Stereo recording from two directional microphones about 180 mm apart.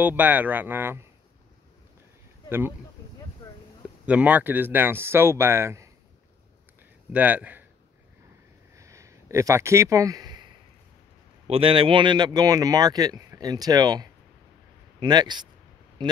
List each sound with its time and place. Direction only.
0.0 s speech: 10° right (ahead or behind)
4.0 s speech: 10° right (ahead or behind)
7.1 s speech: 10° right (ahead or behind)
8.7 s a sound: 15° right (ahead or behind)
11.4 s speech: 30° right (ahead or behind)